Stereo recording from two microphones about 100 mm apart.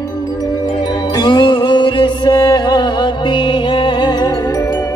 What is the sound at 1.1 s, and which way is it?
Music, 50° left (ahead or behind).